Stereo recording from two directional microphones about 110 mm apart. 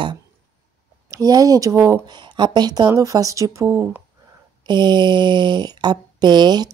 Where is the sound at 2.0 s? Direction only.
45° right (ahead or behind); by 4.0 s 20° right (ahead or behind).